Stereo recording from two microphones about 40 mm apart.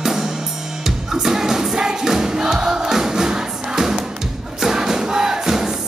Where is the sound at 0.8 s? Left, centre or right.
Centre.